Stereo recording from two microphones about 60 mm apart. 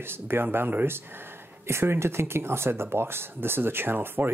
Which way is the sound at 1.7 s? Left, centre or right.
Right.